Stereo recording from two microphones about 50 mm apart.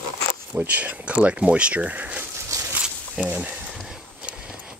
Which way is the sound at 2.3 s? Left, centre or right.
Right.